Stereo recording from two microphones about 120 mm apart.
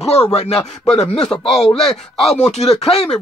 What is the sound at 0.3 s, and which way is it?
Speech, 60° left (ahead or behind).